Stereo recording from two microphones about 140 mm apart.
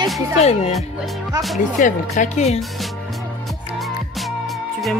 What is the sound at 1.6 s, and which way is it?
Speech, 60° left (ahead or behind).